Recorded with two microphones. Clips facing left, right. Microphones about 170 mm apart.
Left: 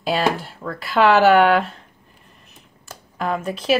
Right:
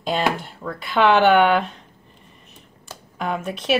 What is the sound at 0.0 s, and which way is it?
A woman's voice, centre (ahead or behind).